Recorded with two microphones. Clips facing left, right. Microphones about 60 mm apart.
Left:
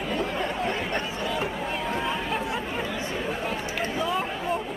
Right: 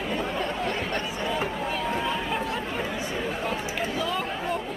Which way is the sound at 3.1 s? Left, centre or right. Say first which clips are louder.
Even; centre.